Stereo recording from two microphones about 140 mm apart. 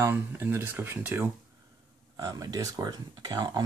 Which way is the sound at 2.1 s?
25° right (ahead or behind).